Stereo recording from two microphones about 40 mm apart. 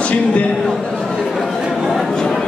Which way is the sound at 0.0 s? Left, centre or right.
Left.